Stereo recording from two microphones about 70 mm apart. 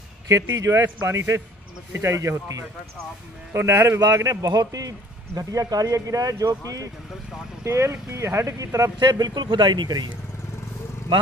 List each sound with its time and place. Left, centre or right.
0.3 s speech: right
3.5 s speech: right
4.0 s speech: right
7.6 s speech: right
9.0 s speech: right